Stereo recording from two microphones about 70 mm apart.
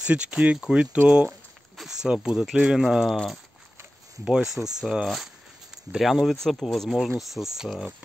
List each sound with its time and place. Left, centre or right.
0.0 s speech: centre
1.8 s speech: centre
4.2 s speech: centre